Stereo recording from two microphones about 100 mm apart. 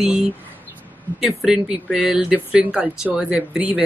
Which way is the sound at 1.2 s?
Centre (ahead or behind).